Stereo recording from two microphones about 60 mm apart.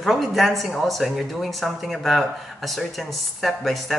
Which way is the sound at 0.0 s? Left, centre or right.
Centre.